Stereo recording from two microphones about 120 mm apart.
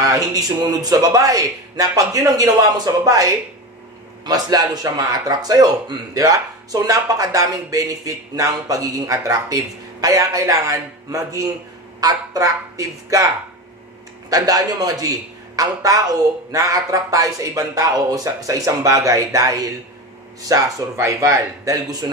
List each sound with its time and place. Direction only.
0.0 s speech: 30° right (ahead or behind)
14.3 s speech: 30° right (ahead or behind)